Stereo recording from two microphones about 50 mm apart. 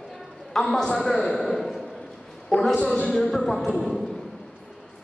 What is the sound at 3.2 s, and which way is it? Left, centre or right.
Speech, centre.